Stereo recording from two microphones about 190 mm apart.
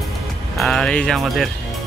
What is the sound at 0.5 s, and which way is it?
Speech, 5° left (ahead or behind).